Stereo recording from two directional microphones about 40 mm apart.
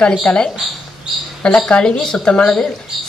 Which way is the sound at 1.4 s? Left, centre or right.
Left.